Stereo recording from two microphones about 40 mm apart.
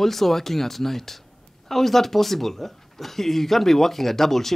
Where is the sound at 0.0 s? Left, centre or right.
Centre.